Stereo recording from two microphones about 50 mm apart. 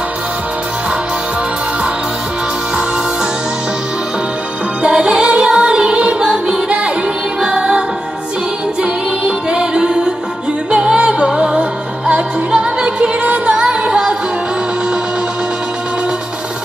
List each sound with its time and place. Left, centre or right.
4.8 s music: centre
8.8 s music: centre